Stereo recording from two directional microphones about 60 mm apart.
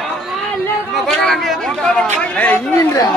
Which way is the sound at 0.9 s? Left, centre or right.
Centre.